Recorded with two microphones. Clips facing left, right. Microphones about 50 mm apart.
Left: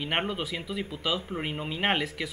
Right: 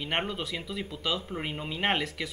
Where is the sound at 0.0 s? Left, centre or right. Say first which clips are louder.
Left 2 dB; centre.